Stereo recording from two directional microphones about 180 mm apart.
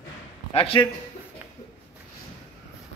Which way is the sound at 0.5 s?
30° left (ahead or behind).